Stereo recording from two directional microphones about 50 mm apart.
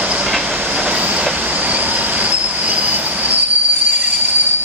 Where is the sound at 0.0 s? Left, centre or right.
Right.